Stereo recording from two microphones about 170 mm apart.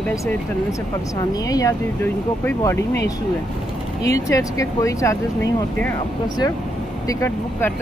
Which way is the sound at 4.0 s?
20° left (ahead or behind).